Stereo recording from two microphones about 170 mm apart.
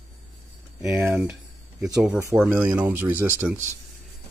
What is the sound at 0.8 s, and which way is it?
Speech, 5° right (ahead or behind).